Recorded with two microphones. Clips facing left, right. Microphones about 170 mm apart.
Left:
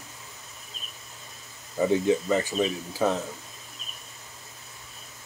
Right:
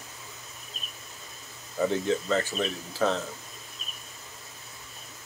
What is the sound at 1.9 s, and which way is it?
Speech, 15° left (ahead or behind).